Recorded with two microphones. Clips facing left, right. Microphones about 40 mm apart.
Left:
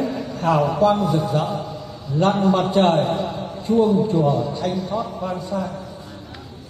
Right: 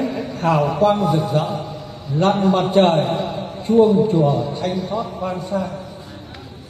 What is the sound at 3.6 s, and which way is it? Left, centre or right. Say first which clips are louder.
Speech: right 4 dB; right.